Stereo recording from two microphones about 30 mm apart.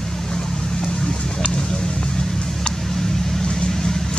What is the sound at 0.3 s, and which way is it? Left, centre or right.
Vehicle, left.